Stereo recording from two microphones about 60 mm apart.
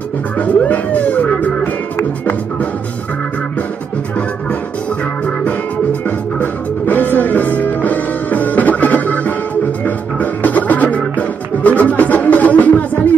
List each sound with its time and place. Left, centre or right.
0.4 s music: left
5.2 s music: left